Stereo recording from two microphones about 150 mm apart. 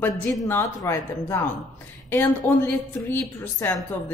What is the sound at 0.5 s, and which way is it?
A woman's voice, 20° left (ahead or behind).